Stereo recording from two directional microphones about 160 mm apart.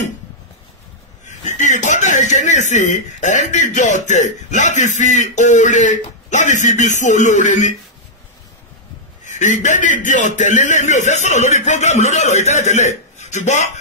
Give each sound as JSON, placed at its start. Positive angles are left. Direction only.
{"t": 1.2, "sound": "speech", "side_deg": 50}
{"t": 9.2, "sound": "a man's voice", "side_deg": 50}